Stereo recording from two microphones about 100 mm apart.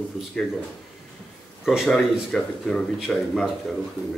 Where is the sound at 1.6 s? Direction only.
Centre (ahead or behind).